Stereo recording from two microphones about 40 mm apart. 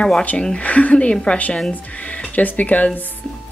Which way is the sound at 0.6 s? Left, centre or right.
Left.